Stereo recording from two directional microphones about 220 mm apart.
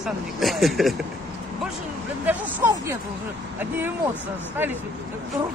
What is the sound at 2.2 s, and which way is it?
Speech, 10° right (ahead or behind).